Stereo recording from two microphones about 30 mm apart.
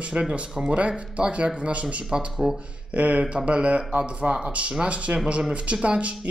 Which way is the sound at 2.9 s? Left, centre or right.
Right.